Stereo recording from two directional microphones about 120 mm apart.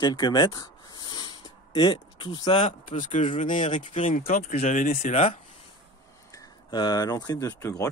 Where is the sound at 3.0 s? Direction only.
90° left; by 5.4 s 65° left (ahead or behind).